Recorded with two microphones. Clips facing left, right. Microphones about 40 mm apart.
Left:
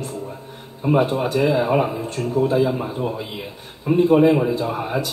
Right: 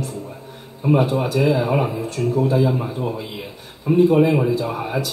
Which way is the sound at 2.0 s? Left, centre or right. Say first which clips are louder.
Right 1 dB; left.